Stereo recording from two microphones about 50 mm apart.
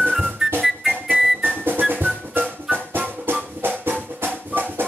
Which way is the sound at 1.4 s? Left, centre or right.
Right.